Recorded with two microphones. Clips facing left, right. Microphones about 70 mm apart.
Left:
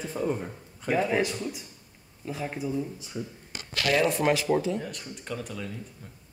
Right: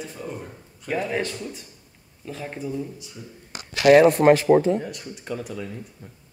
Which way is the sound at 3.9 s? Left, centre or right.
Right.